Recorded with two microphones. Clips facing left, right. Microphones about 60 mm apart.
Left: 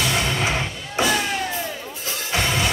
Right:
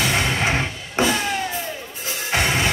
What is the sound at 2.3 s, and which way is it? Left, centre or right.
Music, right.